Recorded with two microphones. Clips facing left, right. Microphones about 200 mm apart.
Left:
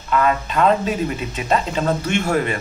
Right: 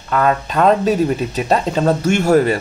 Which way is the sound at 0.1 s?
40° right (ahead or behind).